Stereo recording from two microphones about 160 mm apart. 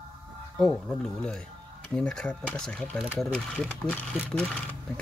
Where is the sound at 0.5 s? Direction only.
5° left (ahead or behind).